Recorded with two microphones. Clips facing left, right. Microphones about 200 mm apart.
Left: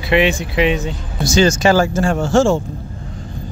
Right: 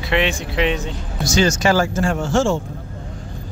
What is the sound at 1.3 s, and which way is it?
Speech, 25° left (ahead or behind).